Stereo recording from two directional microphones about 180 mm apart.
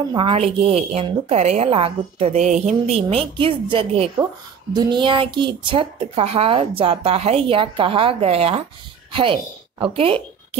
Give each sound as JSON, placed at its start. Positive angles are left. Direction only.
{"t": 0.1, "sound": "a woman's voice", "side_deg": -30}
{"t": 3.3, "sound": "a woman's voice", "side_deg": -30}